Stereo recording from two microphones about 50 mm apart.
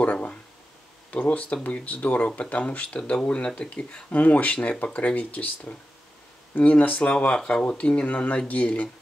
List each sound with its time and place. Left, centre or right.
0.0 s a sound: left
1.1 s speech: left
4.2 s speech: left